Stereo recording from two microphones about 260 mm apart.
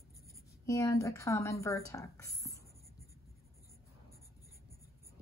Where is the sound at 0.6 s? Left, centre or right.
Centre.